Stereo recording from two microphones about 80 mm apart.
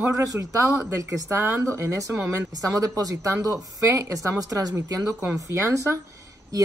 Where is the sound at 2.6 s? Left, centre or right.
Right.